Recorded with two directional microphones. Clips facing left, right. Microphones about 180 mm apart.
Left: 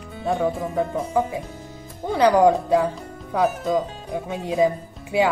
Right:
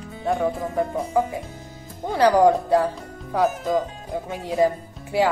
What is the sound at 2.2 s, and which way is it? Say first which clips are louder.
Speech: even; 15° left (ahead or behind).